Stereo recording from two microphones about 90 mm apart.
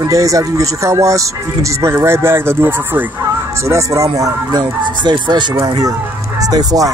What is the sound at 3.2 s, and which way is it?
Speech, 35° right (ahead or behind).